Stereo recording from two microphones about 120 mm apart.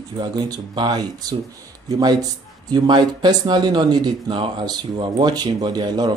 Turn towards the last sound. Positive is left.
turn(degrees=-35)  # may be behind; listen again after turning